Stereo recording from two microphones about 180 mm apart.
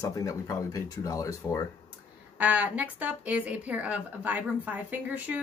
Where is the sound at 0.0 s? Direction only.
20° left (ahead or behind).